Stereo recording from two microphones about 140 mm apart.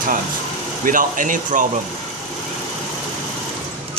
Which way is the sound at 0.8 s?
70° right (ahead or behind).